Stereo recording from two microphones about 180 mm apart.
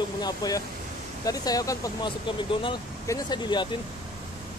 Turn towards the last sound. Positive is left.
turn(degrees=25)  # may be behind; listen again after turning